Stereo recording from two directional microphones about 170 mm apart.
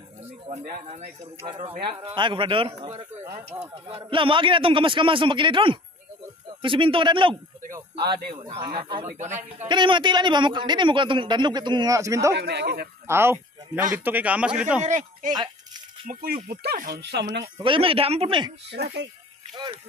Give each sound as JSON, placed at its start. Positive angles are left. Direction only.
{"t": 0.5, "sound": "speech", "side_deg": -45}
{"t": 2.0, "sound": "a man's voice", "side_deg": -30}
{"t": 12.4, "sound": "speech", "side_deg": -80}
{"t": 13.0, "sound": "speech", "side_deg": -15}
{"t": 14.8, "sound": "speech", "side_deg": -45}
{"t": 16.1, "sound": "speech", "side_deg": -55}
{"t": 17.6, "sound": "a man's voice", "side_deg": -30}
{"t": 18.7, "sound": "speech", "side_deg": -75}